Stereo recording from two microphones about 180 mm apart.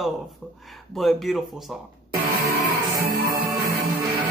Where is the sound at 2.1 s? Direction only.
55° right (ahead or behind).